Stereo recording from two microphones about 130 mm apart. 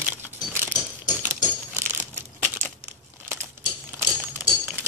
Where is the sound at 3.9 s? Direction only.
15° right (ahead or behind).